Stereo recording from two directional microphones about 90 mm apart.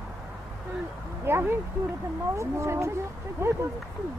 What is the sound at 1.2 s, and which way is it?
Speech, 25° right (ahead or behind).